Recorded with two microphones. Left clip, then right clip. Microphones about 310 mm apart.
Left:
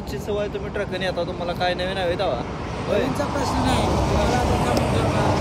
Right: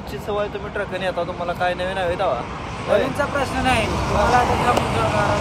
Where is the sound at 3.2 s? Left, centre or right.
Centre.